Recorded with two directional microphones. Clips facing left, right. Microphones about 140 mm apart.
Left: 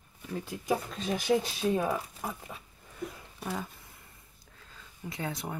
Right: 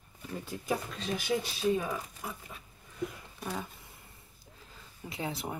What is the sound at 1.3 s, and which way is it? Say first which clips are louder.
Speech: left 5 dB; 65° left (ahead or behind).